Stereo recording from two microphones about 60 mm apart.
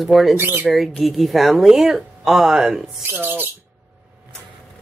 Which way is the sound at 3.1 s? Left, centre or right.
Right.